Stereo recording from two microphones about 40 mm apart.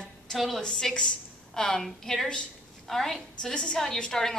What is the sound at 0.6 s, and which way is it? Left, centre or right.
A woman's voice, centre.